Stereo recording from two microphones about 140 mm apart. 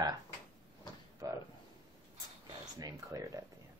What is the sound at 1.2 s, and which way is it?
Speech, 25° right (ahead or behind).